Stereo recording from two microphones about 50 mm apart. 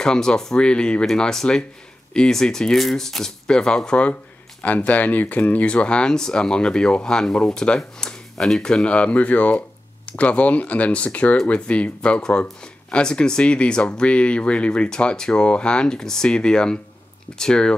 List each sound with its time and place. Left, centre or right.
0.0 s speech: centre
8.8 s speech: left